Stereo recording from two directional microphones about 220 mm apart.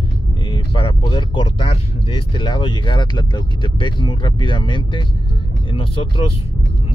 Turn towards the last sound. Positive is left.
turn(degrees=25)  # may be behind; listen again after turning